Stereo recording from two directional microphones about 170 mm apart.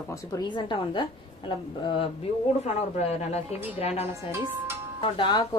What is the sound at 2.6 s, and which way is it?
A woman's voice, 40° left (ahead or behind).